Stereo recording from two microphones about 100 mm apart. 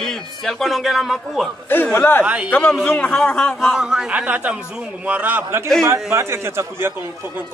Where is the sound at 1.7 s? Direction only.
20° left (ahead or behind).